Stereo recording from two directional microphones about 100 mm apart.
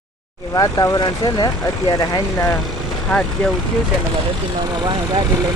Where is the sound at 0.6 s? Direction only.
45° left (ahead or behind).